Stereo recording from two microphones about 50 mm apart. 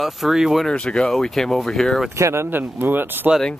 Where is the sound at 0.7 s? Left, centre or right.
Centre.